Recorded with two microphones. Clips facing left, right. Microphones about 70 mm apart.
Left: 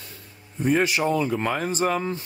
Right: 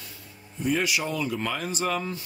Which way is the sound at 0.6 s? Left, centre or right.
Left.